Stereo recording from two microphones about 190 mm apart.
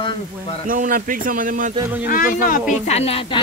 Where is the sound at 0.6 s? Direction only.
45° right (ahead or behind).